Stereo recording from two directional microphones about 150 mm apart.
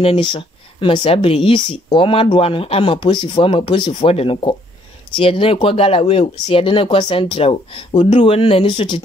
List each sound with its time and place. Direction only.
0.0 s speech: 35° left (ahead or behind)